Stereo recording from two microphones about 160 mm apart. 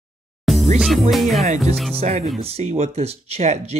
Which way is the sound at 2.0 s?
45° right (ahead or behind).